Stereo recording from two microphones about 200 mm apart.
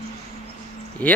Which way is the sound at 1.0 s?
5° left (ahead or behind).